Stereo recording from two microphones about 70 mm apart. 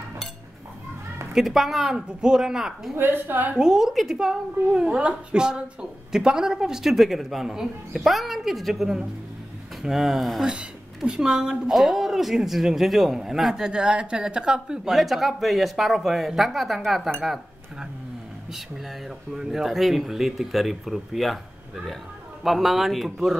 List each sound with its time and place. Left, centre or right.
1.3 s a woman's voice: centre
3.0 s a woman's voice: right
3.5 s a woman's voice: centre
10.5 s speech: centre
22.4 s speech: centre